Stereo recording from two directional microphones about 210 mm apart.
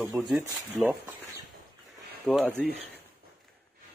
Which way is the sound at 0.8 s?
5° right (ahead or behind).